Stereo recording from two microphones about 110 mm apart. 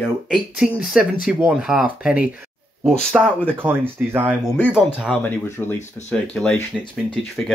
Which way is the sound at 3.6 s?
20° right (ahead or behind).